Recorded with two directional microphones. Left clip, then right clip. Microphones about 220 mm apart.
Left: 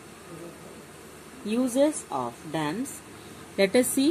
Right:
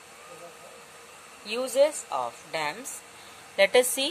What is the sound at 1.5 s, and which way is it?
A woman's voice, 30° right (ahead or behind).